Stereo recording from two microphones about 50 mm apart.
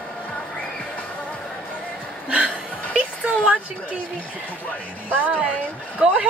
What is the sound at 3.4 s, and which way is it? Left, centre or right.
Speech, right.